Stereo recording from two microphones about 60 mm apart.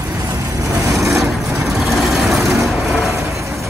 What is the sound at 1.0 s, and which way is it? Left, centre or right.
Vehicle, right.